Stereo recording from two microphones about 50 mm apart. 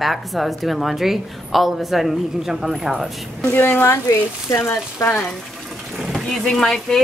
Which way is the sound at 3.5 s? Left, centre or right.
Left.